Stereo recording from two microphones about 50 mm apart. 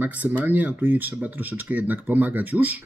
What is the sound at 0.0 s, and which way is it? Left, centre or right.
Speech, right.